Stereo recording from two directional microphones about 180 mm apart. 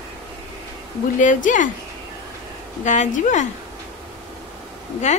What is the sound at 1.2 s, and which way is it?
Speech, 45° left (ahead or behind).